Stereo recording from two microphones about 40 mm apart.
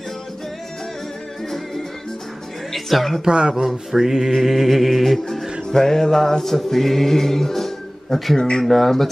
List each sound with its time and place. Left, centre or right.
2.7 s speech: centre
3.3 s speech: centre
3.9 s mantra: centre
4.4 s music: centre
8.4 s speech: centre
8.6 s speech: centre